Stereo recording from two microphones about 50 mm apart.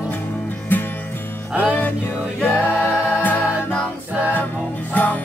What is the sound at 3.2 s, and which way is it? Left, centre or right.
Music, left.